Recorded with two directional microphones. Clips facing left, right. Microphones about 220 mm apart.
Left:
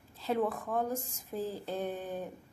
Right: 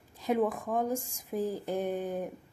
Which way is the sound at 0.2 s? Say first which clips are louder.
Right 3 dB; 15° right (ahead or behind).